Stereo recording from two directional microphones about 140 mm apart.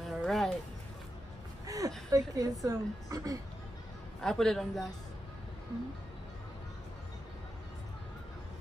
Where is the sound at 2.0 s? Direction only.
25° right (ahead or behind).